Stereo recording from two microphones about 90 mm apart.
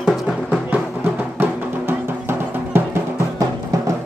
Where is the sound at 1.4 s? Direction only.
25° right (ahead or behind).